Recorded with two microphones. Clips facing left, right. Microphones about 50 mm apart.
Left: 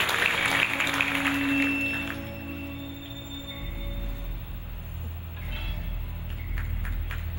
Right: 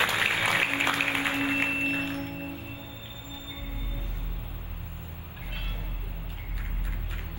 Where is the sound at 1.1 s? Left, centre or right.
Left.